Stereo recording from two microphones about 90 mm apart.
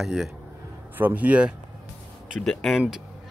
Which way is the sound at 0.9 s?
20° right (ahead or behind).